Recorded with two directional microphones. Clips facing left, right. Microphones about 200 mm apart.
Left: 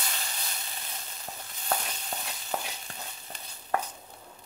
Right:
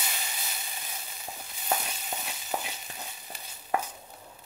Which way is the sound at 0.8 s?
5° right (ahead or behind).